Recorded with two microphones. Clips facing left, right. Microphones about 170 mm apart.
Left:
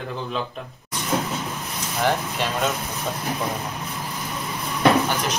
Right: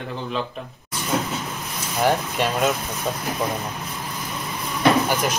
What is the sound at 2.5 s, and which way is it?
Speech, 15° right (ahead or behind).